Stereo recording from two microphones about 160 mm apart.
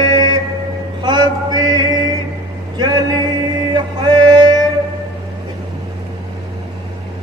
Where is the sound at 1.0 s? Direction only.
25° right (ahead or behind).